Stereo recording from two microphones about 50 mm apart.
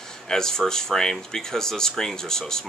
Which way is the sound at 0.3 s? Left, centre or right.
Centre.